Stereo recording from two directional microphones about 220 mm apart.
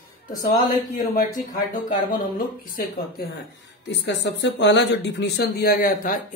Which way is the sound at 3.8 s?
50° left (ahead or behind).